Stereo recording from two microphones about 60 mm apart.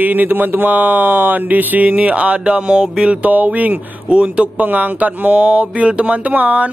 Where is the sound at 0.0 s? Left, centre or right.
Right.